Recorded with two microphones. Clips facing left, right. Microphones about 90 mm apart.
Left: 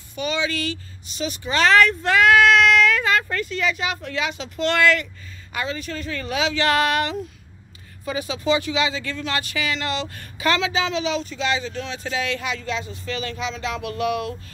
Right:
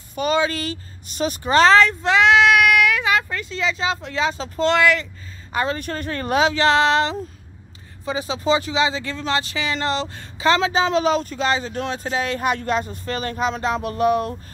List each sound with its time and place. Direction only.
0.1 s speech: 45° right (ahead or behind); by 5.0 s 20° right (ahead or behind)
5.5 s speech: 40° right (ahead or behind)
6.7 s speech: 25° right (ahead or behind)
10.6 s speech: 40° right (ahead or behind)